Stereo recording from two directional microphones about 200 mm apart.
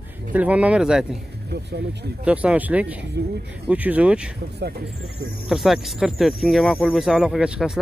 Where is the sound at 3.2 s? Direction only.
55° right (ahead or behind).